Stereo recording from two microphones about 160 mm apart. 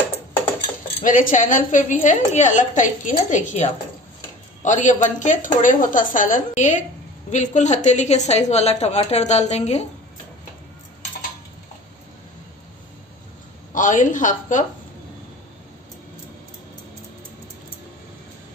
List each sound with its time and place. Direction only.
1.0 s a woman's voice: 55° left (ahead or behind)
13.7 s a woman's voice: 55° left (ahead or behind)